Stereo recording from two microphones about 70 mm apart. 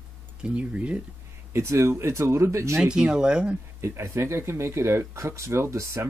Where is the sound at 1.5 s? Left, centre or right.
Right.